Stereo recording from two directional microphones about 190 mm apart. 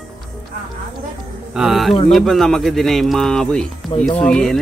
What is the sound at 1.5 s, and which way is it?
Speech, centre (ahead or behind).